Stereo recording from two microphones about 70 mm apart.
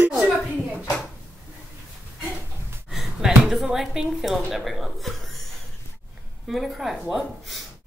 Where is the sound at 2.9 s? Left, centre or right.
Centre.